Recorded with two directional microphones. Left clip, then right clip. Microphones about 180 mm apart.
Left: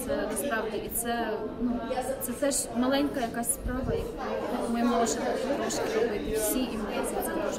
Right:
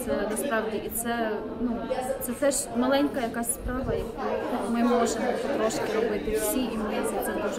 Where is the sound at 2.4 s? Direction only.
20° right (ahead or behind).